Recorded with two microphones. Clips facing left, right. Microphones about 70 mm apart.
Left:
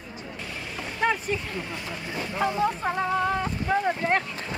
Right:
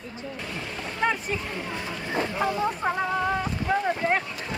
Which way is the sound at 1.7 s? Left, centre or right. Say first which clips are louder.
Right 2 dB; right.